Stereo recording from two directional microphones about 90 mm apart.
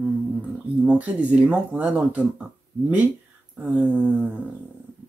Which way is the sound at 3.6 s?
20° right (ahead or behind).